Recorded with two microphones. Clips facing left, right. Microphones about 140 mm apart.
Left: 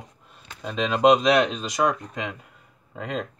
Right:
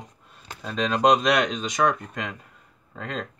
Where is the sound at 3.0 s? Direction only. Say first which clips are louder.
Left 2 dB; 10° left (ahead or behind).